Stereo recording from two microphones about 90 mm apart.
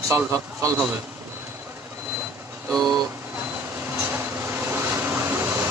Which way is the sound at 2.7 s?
40° right (ahead or behind).